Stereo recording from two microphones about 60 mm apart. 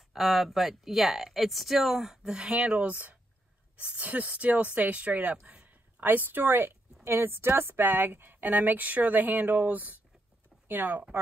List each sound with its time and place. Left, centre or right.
0.1 s a woman's voice: centre; by 11.1 s right